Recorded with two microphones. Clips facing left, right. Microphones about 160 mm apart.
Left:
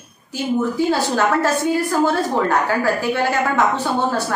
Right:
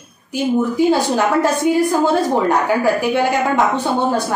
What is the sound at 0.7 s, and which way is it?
Speech, 15° right (ahead or behind).